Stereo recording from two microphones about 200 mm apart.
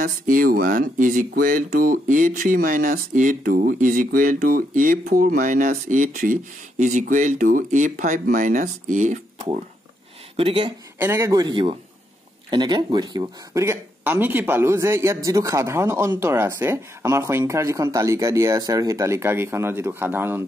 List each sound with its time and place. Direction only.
0.0 s speech: 45° right (ahead or behind)
10.3 s speech: 25° right (ahead or behind)
11.0 s speech: 15° right (ahead or behind)